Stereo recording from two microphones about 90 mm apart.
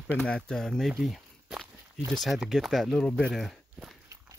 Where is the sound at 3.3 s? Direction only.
Centre (ahead or behind).